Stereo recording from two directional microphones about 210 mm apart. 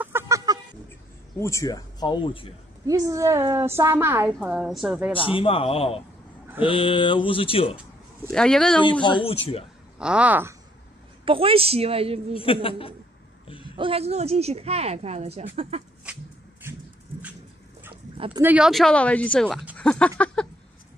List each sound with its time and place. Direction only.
0.0 s chicken: 10° right (ahead or behind)
1.4 s speech: 15° left (ahead or behind)
2.9 s a woman's voice: 15° right (ahead or behind)
5.1 s speech: 25° left (ahead or behind)
8.3 s speech: 5° left (ahead or behind)
9.9 s speech: 5° right (ahead or behind)
11.2 s speech: 25° right (ahead or behind)
12.4 s speech: 25° left (ahead or behind)
13.7 s speech: 25° right (ahead or behind)
18.1 s dog: 25° right (ahead or behind)
18.4 s speech: 5° right (ahead or behind)
19.8 s a sound: 5° left (ahead or behind)